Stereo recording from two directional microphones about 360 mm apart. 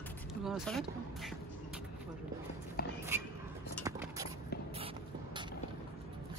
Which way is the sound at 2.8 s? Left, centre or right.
Left.